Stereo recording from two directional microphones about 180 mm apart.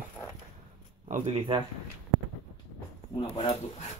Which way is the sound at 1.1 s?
40° right (ahead or behind).